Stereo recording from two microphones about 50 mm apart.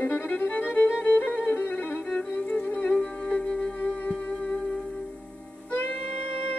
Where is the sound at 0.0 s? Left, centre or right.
Left.